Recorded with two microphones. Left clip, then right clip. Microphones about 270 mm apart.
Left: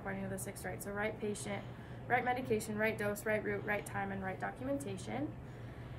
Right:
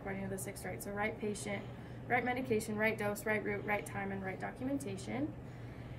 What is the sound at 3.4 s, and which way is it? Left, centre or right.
Speech, left.